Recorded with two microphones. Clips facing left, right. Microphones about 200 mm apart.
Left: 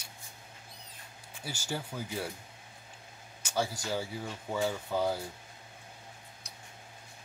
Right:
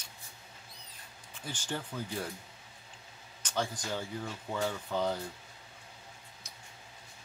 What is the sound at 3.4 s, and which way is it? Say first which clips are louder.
Speech: left 2 dB; 10° left (ahead or behind).